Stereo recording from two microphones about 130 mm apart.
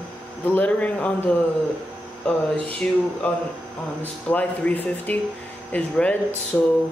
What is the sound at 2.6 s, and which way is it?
Speech, 10° left (ahead or behind).